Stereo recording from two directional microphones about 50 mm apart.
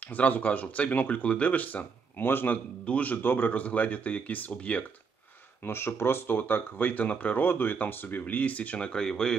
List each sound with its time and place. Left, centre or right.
0.1 s speech: left
2.2 s a man's voice: left
2.5 s speech: left
5.7 s speech: left; by 9.4 s centre